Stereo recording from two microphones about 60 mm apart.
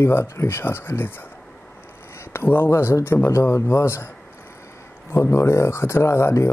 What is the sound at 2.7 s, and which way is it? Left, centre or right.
Speech, left.